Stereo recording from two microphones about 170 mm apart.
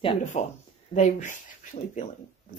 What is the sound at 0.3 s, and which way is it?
Speech, 45° left (ahead or behind).